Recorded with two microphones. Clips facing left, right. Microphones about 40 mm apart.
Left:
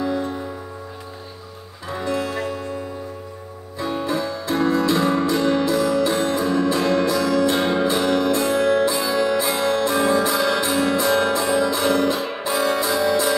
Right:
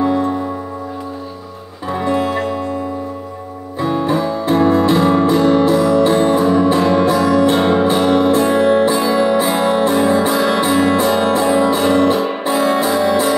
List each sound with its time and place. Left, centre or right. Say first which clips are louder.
0.0 s music: right 8 dB; right
1.9 s music: right 7 dB; right
3.8 s music: right 7 dB; right